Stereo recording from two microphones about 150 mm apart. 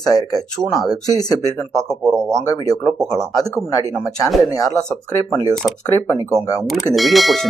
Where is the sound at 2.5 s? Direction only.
25° left (ahead or behind).